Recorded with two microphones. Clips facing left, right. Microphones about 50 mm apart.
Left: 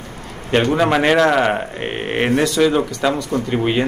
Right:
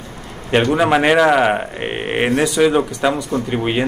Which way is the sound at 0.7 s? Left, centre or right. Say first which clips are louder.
Right 1 dB; centre.